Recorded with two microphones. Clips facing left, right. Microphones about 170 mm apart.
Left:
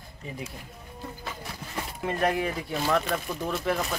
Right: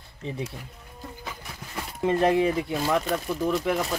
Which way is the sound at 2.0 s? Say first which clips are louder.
Right 6 dB; 25° right (ahead or behind).